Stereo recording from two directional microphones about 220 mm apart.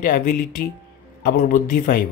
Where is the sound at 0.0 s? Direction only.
35° left (ahead or behind).